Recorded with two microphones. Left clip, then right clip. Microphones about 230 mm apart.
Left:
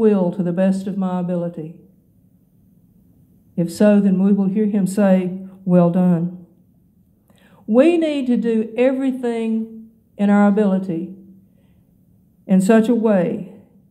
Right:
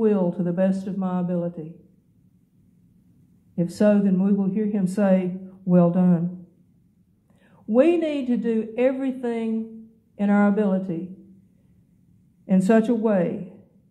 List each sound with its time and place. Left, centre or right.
0.0 s a woman's voice: left
3.5 s a woman's voice: left
7.5 s a woman's voice: left
12.4 s a woman's voice: left